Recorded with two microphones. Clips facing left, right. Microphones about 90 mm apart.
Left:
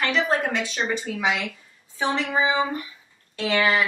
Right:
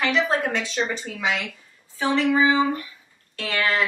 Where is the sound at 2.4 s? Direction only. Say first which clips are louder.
Right 3 dB; 20° left (ahead or behind).